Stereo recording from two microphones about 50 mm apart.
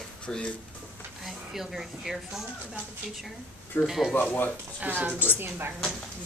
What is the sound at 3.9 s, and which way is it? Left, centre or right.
Speech, centre.